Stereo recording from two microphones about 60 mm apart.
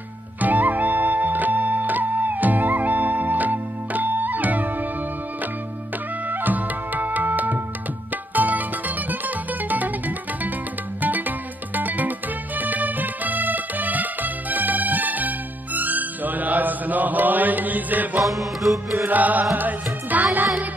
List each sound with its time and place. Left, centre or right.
0.4 s music: right
6.2 s music: right
18.2 s music: centre
19.0 s music: right